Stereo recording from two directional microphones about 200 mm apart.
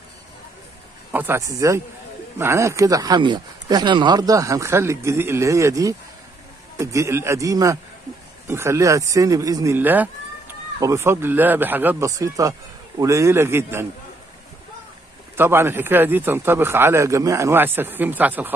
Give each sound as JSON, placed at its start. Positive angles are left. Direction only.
{"t": 1.1, "sound": "speech", "side_deg": -10}
{"t": 15.3, "sound": "speech", "side_deg": -10}